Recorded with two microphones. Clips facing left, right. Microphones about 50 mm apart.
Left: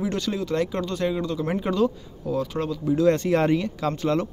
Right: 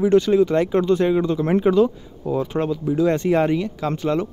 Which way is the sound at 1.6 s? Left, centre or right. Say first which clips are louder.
Right 6 dB; centre.